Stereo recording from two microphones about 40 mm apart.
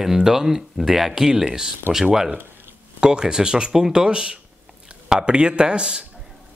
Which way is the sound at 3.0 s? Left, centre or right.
Centre.